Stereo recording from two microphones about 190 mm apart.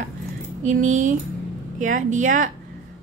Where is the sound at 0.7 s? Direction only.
40° right (ahead or behind).